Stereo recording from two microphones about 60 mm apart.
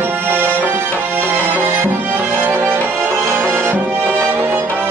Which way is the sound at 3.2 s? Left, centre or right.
Right.